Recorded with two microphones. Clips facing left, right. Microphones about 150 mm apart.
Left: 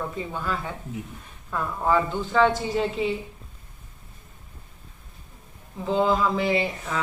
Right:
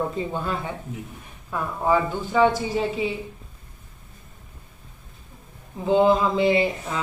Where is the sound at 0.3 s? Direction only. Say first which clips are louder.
Right 2 dB; 25° right (ahead or behind).